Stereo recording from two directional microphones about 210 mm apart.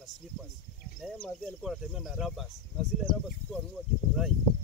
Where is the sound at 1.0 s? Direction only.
Centre (ahead or behind).